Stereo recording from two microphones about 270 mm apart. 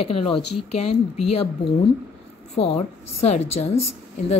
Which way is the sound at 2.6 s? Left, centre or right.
Left.